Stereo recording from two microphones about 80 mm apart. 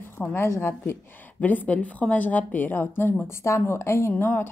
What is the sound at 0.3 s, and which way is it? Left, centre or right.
A woman's voice, left.